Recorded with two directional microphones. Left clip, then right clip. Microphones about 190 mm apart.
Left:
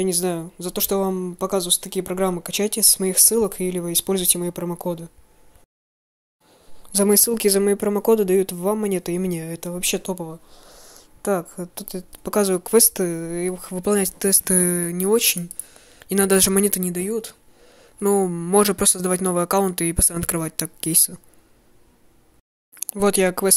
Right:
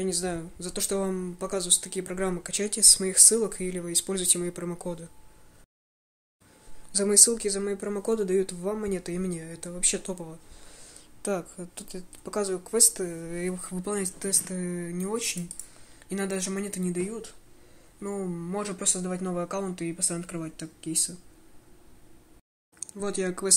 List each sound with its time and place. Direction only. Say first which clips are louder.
0.0 s speech: left 7 dB; 40° left (ahead or behind)
6.9 s a woman's voice: left 4 dB; 40° left (ahead or behind); by 21.1 s 60° left (ahead or behind)
22.8 s speech: left 12 dB; 50° left (ahead or behind)